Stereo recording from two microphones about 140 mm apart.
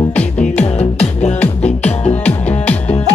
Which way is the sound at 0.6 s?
50° left (ahead or behind).